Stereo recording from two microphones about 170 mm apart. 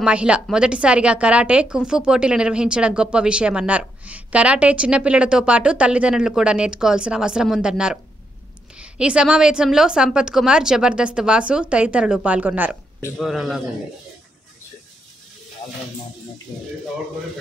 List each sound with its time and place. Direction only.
0.0 s a woman's voice: 5° right (ahead or behind)